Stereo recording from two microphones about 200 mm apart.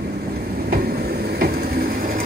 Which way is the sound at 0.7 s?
50° right (ahead or behind).